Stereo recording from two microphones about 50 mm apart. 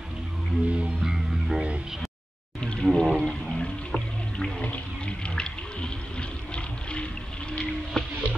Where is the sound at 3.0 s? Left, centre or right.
Centre.